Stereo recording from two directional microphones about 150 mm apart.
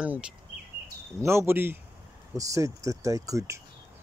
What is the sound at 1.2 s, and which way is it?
Speech, 15° right (ahead or behind).